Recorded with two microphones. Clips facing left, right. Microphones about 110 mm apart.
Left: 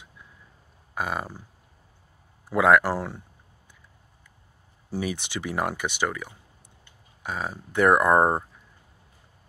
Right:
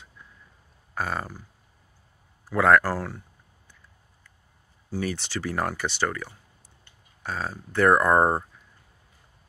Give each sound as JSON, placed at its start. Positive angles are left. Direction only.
{"t": 0.9, "sound": "speech", "side_deg": 15}
{"t": 2.5, "sound": "speech", "side_deg": 15}
{"t": 4.9, "sound": "speech", "side_deg": 15}